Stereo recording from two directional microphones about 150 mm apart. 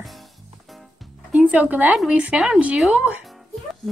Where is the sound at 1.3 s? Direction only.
10° right (ahead or behind).